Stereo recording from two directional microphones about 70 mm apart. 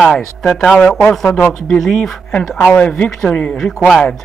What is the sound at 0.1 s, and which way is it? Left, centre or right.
Speech, centre.